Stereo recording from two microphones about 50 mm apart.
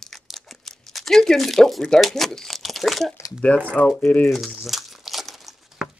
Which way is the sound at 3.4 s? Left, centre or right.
Left.